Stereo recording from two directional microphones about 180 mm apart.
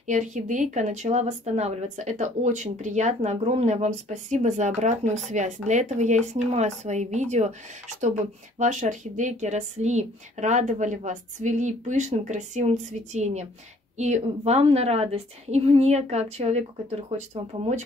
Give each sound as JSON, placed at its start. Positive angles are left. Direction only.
{"t": 0.0, "sound": "speech", "side_deg": -45}